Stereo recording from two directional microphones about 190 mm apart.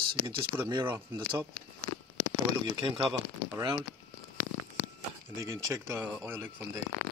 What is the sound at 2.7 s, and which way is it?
Speech, 20° right (ahead or behind).